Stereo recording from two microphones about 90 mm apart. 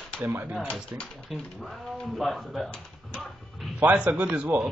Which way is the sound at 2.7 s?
5° left (ahead or behind).